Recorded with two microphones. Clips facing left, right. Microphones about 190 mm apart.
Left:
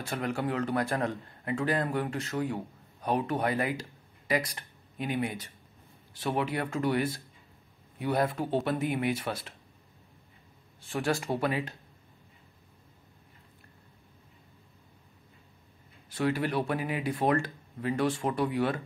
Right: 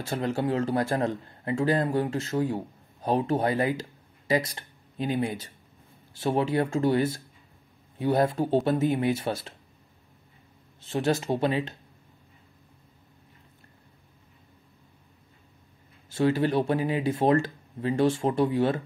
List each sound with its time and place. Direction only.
0.0 s a man's voice: 25° right (ahead or behind)
10.8 s a man's voice: 20° right (ahead or behind)
16.1 s a man's voice: 25° right (ahead or behind)